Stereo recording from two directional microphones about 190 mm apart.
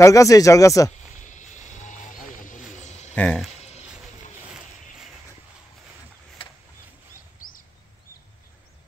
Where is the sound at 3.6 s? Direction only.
35° left (ahead or behind).